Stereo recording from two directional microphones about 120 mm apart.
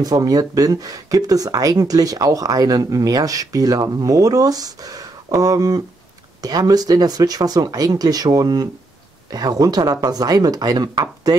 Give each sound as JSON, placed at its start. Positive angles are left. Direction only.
{"t": 0.0, "sound": "speech", "side_deg": -30}